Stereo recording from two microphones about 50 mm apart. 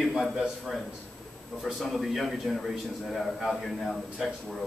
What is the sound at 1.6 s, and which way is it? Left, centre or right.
A man's voice, centre.